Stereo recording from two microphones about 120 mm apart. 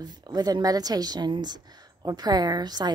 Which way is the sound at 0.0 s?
35° right (ahead or behind).